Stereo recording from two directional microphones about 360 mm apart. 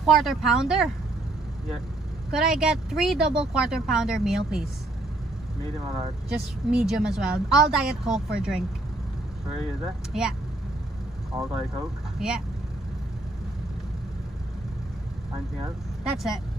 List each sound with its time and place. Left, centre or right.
0.0 s speech: centre
2.3 s speech: centre
6.7 s speech: centre
10.1 s speech: centre
12.2 s speech: centre
16.0 s speech: centre